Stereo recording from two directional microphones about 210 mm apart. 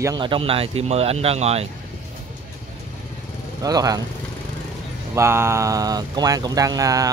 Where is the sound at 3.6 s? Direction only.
15° right (ahead or behind).